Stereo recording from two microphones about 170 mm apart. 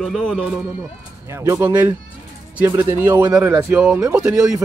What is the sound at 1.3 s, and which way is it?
A man's voice, 15° right (ahead or behind).